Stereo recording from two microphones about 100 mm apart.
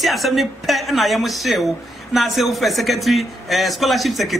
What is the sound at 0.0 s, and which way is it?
A man's voice, centre (ahead or behind).